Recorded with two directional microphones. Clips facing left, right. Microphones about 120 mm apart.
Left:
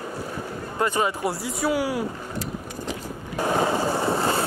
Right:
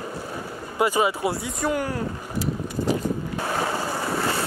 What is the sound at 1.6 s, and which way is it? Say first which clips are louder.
Speech: left 2 dB; 5° left (ahead or behind).